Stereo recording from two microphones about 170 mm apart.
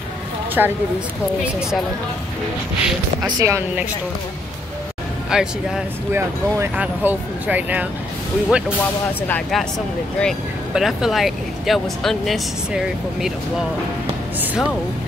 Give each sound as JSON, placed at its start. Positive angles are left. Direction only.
{"t": 0.6, "sound": "speech", "side_deg": -10}
{"t": 3.2, "sound": "speech", "side_deg": -20}
{"t": 5.3, "sound": "speech", "side_deg": -5}
{"t": 6.1, "sound": "speech", "side_deg": -15}